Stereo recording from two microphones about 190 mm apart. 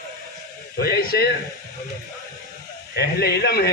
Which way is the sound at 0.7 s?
55° left (ahead or behind).